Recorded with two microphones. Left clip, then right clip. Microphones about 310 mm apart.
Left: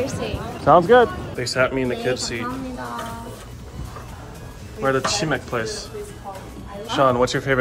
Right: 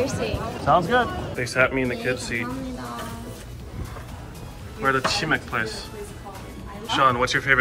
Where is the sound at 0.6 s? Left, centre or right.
Left.